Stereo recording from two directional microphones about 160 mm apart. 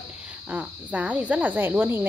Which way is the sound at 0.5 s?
10° right (ahead or behind).